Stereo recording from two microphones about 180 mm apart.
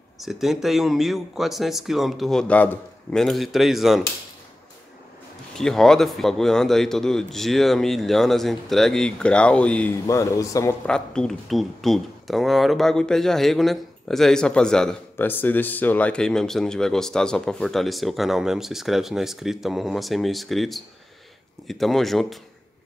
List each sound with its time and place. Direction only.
0.2 s speech: centre (ahead or behind)
5.6 s speech: 5° left (ahead or behind)
10.0 s a man's voice: 15° left (ahead or behind)
10.9 s speech: 5° left (ahead or behind)